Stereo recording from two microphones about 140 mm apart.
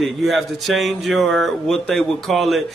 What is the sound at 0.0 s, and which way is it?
Speech, centre (ahead or behind).